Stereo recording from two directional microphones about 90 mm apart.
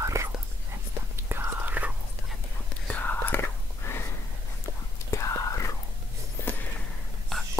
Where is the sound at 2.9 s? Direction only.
20° left (ahead or behind).